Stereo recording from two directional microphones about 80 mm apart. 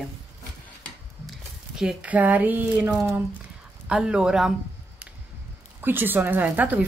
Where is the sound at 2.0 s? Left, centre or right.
Centre.